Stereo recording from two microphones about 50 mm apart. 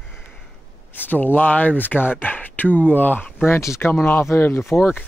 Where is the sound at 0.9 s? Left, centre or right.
Left.